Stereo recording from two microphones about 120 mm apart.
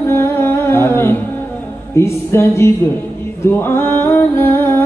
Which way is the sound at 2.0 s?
25° left (ahead or behind).